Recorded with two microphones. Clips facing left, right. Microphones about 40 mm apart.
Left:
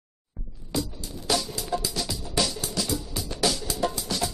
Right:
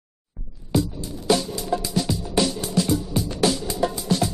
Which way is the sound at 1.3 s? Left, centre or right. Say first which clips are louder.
Right 6 dB; right.